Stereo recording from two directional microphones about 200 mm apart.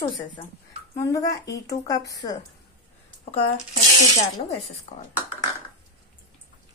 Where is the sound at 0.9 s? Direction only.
15° left (ahead or behind).